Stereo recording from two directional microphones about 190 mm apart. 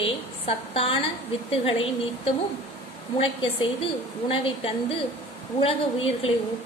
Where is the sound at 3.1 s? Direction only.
30° left (ahead or behind).